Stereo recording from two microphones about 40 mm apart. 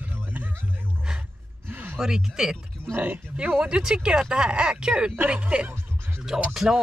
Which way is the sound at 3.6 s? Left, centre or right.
Right.